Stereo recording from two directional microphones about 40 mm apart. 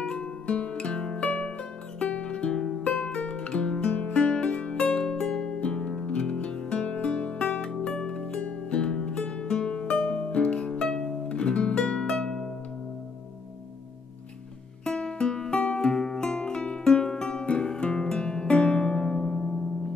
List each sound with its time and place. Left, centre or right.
0.0 s music: centre
3.2 s music: left
5.0 s music: centre
8.4 s music: left
14.9 s music: left